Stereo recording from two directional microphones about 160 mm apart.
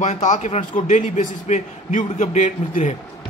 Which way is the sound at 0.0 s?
50° left (ahead or behind).